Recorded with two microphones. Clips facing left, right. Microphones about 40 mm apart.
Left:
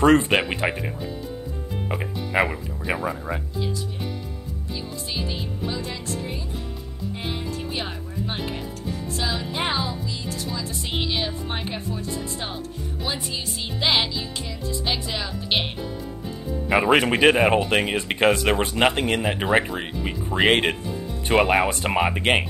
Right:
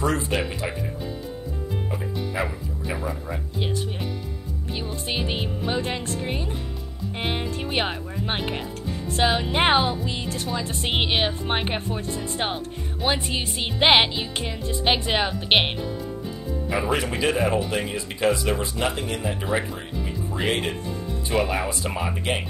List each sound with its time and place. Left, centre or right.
0.0 s speech: left
1.9 s speech: left
3.0 s speech: left
5.1 s speech: right
16.7 s speech: left